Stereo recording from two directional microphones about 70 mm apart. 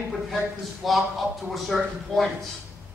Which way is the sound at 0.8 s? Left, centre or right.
Centre.